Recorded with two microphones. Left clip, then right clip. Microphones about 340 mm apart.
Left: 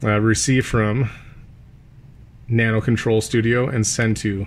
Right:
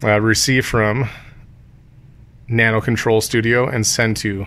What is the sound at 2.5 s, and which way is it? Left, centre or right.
Speech, centre.